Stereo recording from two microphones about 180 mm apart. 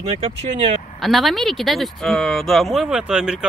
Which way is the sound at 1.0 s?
Centre (ahead or behind).